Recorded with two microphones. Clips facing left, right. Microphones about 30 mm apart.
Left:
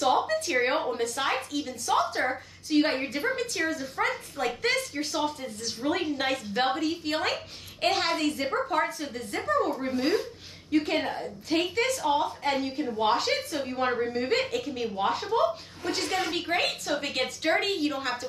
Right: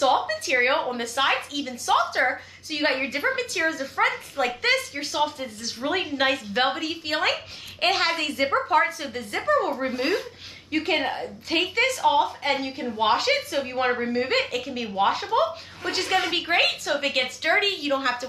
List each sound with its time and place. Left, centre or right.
0.5 s a woman's voice: right
1.1 s a woman's voice: right
2.1 s a woman's voice: right
3.7 s a woman's voice: right
4.0 s a woman's voice: right
8.5 s a woman's voice: right